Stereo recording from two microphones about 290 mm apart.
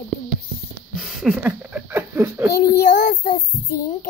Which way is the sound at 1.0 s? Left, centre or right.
Centre.